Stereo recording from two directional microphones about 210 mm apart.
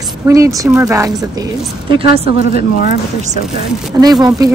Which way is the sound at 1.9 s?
25° right (ahead or behind).